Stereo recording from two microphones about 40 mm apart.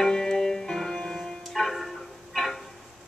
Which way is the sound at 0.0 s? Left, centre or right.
Centre.